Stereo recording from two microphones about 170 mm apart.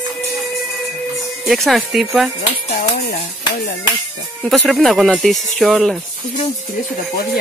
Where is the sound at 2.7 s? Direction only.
65° left (ahead or behind).